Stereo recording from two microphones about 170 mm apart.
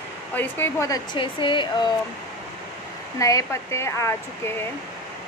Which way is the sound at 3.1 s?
20° left (ahead or behind).